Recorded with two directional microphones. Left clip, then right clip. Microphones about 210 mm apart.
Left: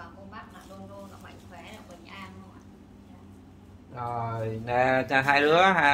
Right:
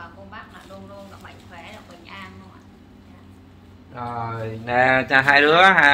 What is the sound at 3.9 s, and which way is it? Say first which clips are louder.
Speech: right 3 dB; 15° right (ahead or behind).